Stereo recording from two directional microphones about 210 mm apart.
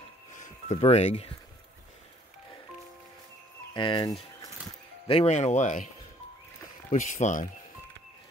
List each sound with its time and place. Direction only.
0.4 s speech: 30° left (ahead or behind)
3.7 s speech: 20° left (ahead or behind)
6.9 s speech: 35° left (ahead or behind)